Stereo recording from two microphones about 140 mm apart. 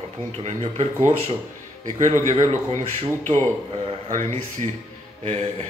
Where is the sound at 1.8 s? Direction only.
55° right (ahead or behind).